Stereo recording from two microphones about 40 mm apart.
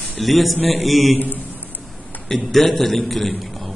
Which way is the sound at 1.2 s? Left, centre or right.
Left.